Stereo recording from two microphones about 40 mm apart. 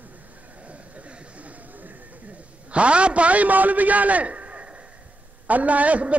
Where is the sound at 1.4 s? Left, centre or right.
Right.